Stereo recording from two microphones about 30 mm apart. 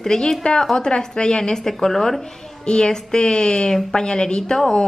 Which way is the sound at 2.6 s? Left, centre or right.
Left.